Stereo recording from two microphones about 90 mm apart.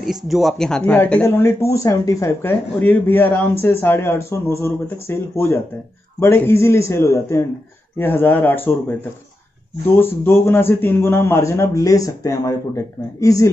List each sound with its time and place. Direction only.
0.0 s speech: centre (ahead or behind)
0.8 s speech: 20° left (ahead or behind)
1.2 s a man's voice: 30° left (ahead or behind)
2.8 s a man's voice: 20° left (ahead or behind)
9.9 s a man's voice: 25° left (ahead or behind)